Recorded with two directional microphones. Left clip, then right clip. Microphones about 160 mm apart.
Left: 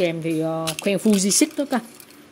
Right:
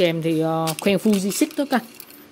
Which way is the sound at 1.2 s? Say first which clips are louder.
Left 2 dB; 10° left (ahead or behind).